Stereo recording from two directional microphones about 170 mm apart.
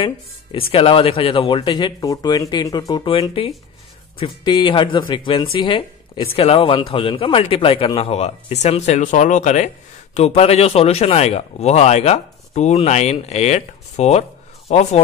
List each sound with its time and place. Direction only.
0.0 s speech: 30° left (ahead or behind)